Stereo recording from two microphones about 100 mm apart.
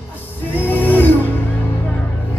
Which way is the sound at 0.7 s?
20° left (ahead or behind).